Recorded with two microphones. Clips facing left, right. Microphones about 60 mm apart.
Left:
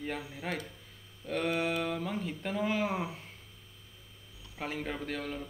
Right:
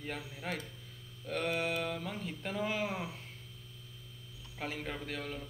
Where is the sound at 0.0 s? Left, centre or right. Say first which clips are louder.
Left 4 dB; centre.